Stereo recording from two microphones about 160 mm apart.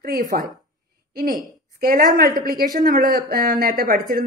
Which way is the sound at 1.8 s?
60° right (ahead or behind).